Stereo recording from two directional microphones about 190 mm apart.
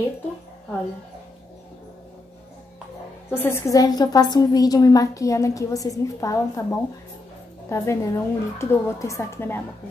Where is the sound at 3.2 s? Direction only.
10° left (ahead or behind).